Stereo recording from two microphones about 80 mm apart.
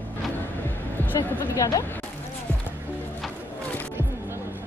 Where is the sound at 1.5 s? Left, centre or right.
Left.